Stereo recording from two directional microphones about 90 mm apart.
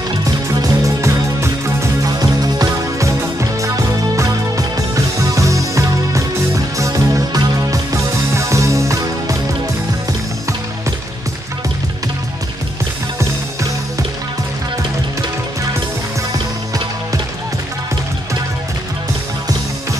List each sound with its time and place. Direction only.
0.5 s music: 40° right (ahead or behind)
2.1 s music: 45° right (ahead or behind)